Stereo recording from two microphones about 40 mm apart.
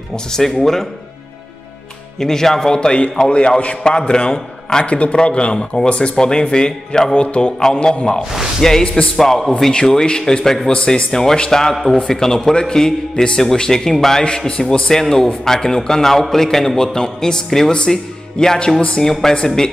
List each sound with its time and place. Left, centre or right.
0.3 s a man's voice: centre
2.1 s a man's voice: centre
4.8 s speech: left
8.2 s speech: centre
8.5 s a man's voice: centre
8.8 s speech: left
9.2 s a man's voice: centre
11.7 s a man's voice: centre
18.8 s speech: left
19.3 s a man's voice: centre